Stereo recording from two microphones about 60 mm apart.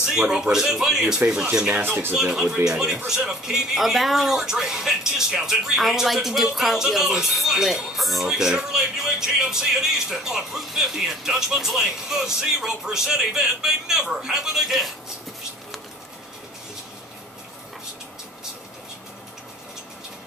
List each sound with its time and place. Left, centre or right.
0.1 s speech: centre
1.8 s speech: right
2.1 s speech: centre